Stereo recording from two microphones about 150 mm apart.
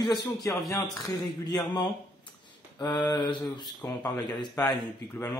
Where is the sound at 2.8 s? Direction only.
30° left (ahead or behind).